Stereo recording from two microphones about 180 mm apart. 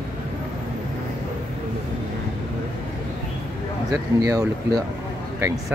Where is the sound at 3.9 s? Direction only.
20° right (ahead or behind).